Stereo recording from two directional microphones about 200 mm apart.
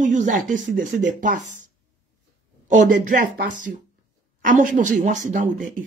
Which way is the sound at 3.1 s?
40° right (ahead or behind).